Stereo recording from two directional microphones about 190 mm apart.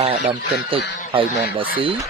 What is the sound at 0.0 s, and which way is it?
Speech, 30° right (ahead or behind).